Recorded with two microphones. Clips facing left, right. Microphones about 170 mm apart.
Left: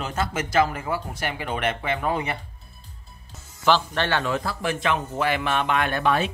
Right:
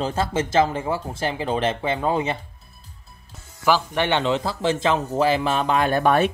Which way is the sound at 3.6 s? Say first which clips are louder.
Right 1 dB; 10° right (ahead or behind).